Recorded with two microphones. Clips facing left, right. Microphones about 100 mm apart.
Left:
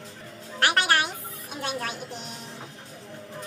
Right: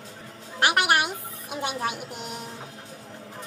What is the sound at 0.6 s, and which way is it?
Music, 15° right (ahead or behind).